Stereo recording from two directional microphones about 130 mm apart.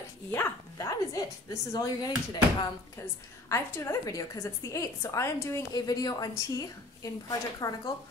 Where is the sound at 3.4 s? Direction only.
25° left (ahead or behind).